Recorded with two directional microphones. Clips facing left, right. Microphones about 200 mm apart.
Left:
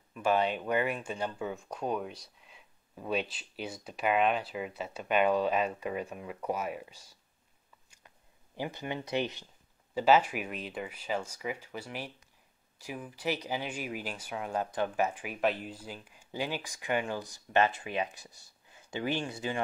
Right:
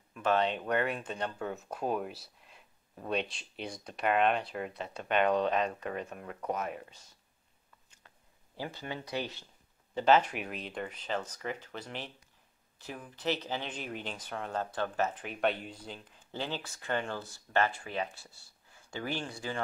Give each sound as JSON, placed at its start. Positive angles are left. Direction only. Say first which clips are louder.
{"t": 0.1, "sound": "speech", "louder": "left 1 dB", "side_deg": 10}
{"t": 8.5, "sound": "speech", "louder": "left 3 dB", "side_deg": 15}
{"t": 9.9, "sound": "speech", "louder": "left 1 dB", "side_deg": 5}